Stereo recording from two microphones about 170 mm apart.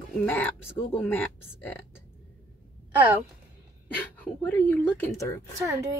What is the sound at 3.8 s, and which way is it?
Speech, 10° left (ahead or behind).